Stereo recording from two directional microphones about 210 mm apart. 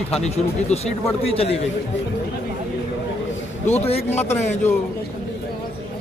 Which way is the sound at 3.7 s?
30° left (ahead or behind).